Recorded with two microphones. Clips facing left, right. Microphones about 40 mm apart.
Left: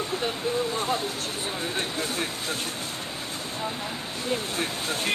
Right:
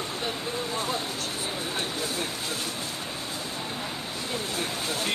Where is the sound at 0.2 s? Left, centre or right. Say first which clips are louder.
Left 4 dB; left.